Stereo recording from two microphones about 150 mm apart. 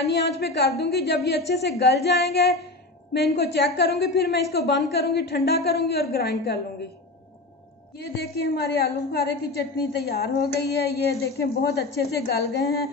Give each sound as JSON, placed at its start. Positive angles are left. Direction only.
{"t": 0.0, "sound": "a woman's voice", "side_deg": 90}
{"t": 8.4, "sound": "a woman's voice", "side_deg": 90}
{"t": 11.1, "sound": "a woman's voice", "side_deg": 20}
{"t": 11.6, "sound": "a woman's voice", "side_deg": 90}